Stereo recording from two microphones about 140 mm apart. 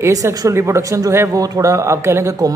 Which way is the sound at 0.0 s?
25° right (ahead or behind).